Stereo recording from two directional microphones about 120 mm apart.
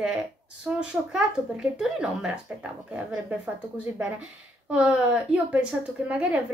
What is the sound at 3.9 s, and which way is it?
A woman's voice, 10° right (ahead or behind).